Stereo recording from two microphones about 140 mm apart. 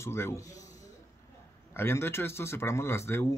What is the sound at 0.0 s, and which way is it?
Speech, 20° left (ahead or behind).